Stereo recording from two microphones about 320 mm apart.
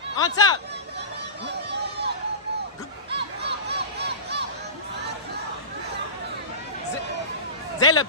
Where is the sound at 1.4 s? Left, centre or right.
Right.